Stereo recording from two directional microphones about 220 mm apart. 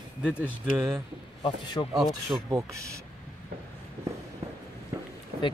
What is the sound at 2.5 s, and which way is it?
Speech, 15° right (ahead or behind).